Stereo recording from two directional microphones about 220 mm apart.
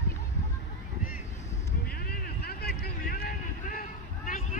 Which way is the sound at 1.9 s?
45° left (ahead or behind).